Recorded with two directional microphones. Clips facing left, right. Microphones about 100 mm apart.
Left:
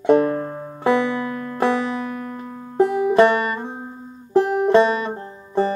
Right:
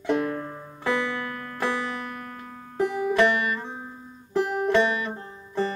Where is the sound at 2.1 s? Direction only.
20° left (ahead or behind); by 5.8 s 35° left (ahead or behind).